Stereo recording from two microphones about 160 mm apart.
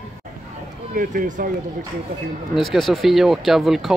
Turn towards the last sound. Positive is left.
turn(degrees=0)  # may be behind; listen again after turning